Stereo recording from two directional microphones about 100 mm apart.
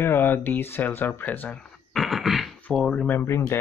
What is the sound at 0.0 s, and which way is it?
Speech, 20° left (ahead or behind).